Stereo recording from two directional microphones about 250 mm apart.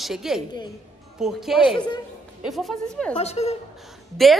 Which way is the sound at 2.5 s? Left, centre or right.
Centre.